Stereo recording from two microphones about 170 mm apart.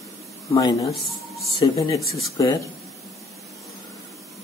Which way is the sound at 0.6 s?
20° left (ahead or behind).